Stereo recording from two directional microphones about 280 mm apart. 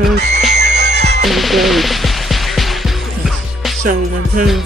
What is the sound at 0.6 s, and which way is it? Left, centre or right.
Music, right.